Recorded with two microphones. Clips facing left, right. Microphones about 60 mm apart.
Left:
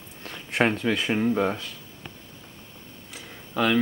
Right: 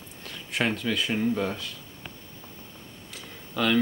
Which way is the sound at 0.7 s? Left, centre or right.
Left.